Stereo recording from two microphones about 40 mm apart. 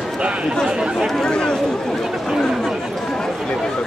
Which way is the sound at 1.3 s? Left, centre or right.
Left.